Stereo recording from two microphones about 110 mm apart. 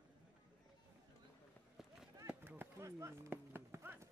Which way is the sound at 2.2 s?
20° right (ahead or behind).